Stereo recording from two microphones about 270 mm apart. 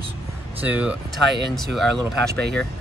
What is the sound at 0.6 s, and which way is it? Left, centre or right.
Speech, centre.